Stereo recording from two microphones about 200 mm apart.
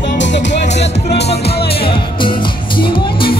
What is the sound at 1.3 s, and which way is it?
Music, 30° left (ahead or behind).